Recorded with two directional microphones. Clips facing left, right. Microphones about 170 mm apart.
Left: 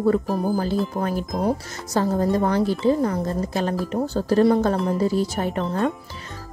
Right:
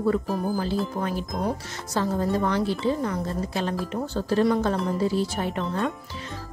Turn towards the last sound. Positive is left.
turn(degrees=40)  # may be behind; listen again after turning